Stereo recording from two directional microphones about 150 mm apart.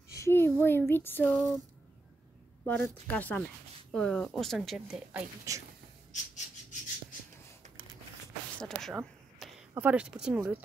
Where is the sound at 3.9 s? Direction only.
5° left (ahead or behind).